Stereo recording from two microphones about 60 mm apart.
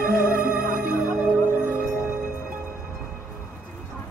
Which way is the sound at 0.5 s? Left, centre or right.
Centre.